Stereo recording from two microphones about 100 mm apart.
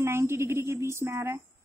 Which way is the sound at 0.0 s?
25° right (ahead or behind).